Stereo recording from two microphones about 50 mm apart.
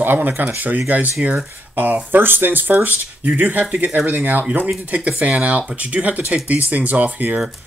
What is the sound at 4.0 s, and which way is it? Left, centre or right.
Speech, right.